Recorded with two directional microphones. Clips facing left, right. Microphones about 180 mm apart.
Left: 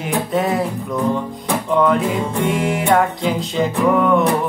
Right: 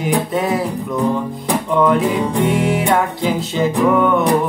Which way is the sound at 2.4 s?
Centre (ahead or behind).